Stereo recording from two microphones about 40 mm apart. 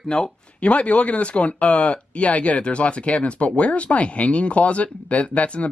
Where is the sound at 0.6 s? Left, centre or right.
Left.